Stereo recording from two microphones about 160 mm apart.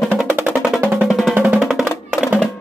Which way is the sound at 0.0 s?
5° left (ahead or behind).